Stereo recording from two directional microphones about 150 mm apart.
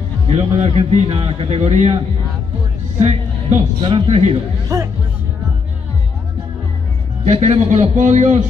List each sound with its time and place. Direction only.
0.4 s a man's voice: 40° right (ahead or behind)
3.0 s music: 45° right (ahead or behind)
3.8 s a man's voice: 35° right (ahead or behind)
4.7 s speech: 20° right (ahead or behind)
7.2 s a man's voice: 45° right (ahead or behind)